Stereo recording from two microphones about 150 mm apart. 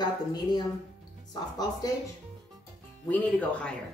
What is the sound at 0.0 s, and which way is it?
Speech, 30° left (ahead or behind).